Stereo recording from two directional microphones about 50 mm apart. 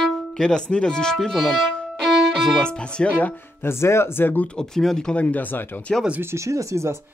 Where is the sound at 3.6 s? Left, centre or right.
Left.